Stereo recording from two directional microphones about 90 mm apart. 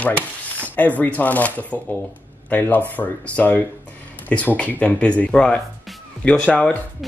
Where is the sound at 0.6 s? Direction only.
20° left (ahead or behind).